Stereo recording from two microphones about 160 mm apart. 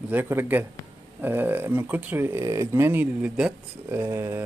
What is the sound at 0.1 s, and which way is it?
Speech, 15° right (ahead or behind).